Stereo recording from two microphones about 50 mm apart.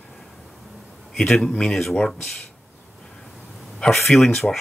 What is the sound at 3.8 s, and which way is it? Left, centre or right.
Speech, centre.